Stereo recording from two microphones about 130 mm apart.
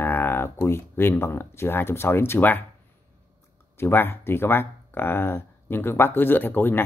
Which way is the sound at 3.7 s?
15° left (ahead or behind).